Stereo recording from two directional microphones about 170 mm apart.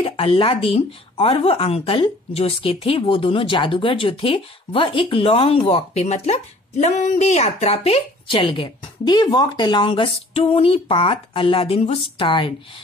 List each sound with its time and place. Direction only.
0.0 s speech: 35° left (ahead or behind)